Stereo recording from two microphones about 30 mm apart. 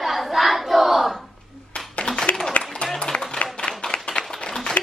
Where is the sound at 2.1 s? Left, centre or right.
Left.